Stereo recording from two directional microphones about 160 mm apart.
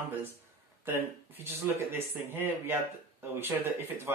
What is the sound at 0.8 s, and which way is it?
Speech, 15° right (ahead or behind).